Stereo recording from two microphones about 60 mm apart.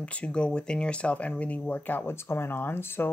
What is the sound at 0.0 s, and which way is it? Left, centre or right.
Speech, centre.